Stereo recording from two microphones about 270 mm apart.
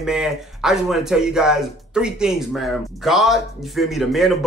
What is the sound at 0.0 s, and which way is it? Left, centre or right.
Speech, centre.